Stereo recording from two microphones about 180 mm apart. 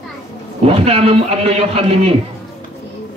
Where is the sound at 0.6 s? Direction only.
35° right (ahead or behind).